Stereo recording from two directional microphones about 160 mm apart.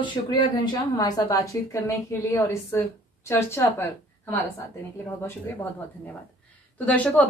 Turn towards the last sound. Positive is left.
turn(degrees=10)  # may be behind; listen again after turning